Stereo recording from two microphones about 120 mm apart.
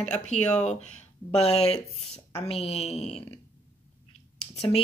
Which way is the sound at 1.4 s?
60° left (ahead or behind).